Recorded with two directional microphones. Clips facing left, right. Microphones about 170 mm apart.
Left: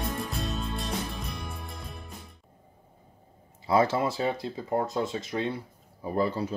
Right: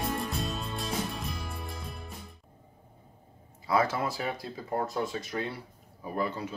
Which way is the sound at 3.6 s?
25° left (ahead or behind).